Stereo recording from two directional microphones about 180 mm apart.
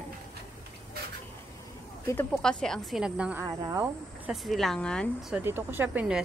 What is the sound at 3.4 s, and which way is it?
Speech, 20° right (ahead or behind).